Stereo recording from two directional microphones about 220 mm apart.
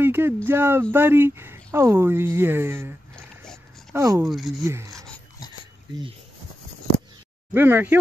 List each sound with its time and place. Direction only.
0.0 s a sound: 10° right (ahead or behind)
0.5 s speech: 10° right (ahead or behind)
4.3 s speech: centre (ahead or behind)
4.6 s speech: 15° right (ahead or behind)
4.9 s dog: 5° left (ahead or behind)
7.5 s speech: 10° right (ahead or behind)